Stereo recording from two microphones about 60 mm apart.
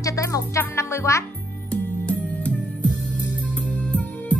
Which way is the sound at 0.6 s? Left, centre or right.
Left.